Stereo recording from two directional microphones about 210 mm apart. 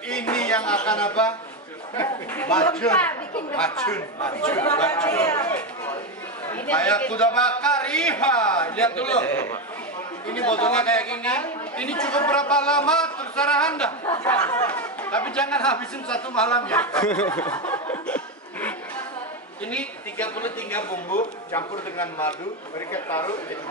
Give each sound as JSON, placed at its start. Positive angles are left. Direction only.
{"t": 0.1, "sound": "a man's voice", "side_deg": 5}
{"t": 7.7, "sound": "a sound", "side_deg": 5}
{"t": 8.0, "sound": "a man's voice", "side_deg": 5}
{"t": 18.0, "sound": "chuckle", "side_deg": 5}
{"t": 19.7, "sound": "a man's voice", "side_deg": 5}
{"t": 20.9, "sound": "speech", "side_deg": 40}
{"t": 21.5, "sound": "a man's voice", "side_deg": 10}